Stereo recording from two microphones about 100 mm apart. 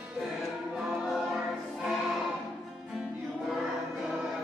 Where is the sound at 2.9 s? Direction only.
5° right (ahead or behind).